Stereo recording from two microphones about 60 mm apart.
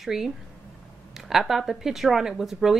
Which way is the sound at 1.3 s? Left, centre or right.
Centre.